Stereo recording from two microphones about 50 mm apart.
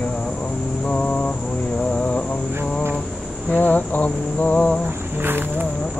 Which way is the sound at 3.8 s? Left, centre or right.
Left.